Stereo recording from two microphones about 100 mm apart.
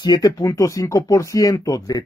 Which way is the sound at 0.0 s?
40° left (ahead or behind).